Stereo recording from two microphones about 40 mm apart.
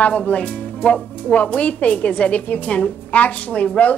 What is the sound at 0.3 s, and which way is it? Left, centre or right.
Speech, left.